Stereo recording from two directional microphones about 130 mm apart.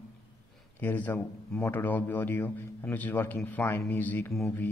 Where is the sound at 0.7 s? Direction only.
15° left (ahead or behind).